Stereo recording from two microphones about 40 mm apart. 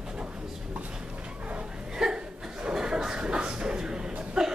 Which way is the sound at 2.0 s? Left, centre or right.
Centre.